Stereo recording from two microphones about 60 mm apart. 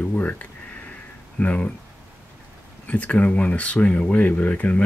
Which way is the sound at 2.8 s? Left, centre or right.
Left.